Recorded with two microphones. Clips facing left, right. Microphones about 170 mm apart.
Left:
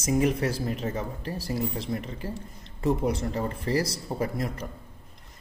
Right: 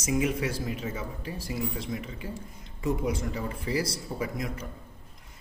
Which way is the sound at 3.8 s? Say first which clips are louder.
Left 3 dB; 40° left (ahead or behind).